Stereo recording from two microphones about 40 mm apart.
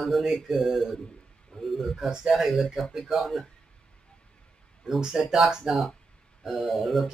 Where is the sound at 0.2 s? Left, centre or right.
Centre.